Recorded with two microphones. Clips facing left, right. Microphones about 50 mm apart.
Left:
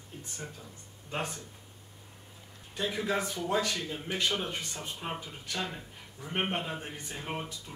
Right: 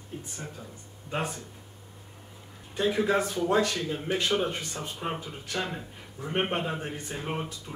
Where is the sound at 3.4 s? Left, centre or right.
Centre.